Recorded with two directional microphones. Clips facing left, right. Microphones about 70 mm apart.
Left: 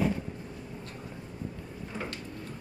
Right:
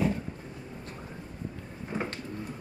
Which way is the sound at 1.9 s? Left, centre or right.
Right.